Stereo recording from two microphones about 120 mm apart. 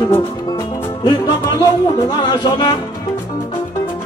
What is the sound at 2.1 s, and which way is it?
Music, 35° left (ahead or behind).